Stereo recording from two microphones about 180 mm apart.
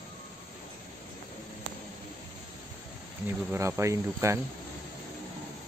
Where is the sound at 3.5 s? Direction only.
15° right (ahead or behind).